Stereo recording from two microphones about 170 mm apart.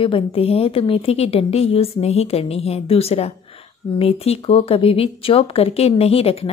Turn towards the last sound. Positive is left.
turn(degrees=35)  # may be behind; listen again after turning